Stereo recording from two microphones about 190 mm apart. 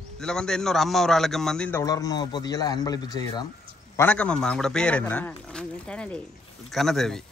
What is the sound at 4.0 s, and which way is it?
Speech, 5° left (ahead or behind).